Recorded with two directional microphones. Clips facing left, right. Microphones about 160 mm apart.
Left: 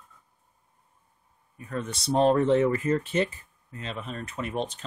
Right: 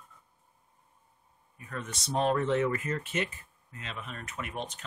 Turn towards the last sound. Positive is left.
turn(degrees=30)  # may be behind; listen again after turning